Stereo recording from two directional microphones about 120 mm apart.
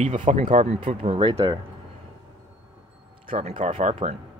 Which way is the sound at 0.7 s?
50° right (ahead or behind).